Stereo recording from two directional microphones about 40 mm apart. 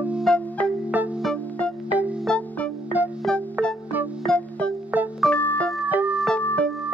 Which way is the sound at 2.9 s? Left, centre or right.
Right.